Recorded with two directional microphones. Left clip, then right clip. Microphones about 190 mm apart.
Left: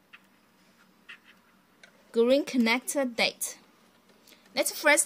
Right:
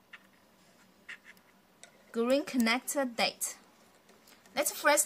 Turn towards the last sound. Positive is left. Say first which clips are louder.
# left 4 dB
turn(degrees=15)  # may be behind; listen again after turning